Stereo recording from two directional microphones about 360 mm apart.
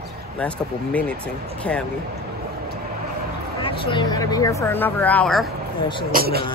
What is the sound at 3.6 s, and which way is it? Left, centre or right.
Speech, centre.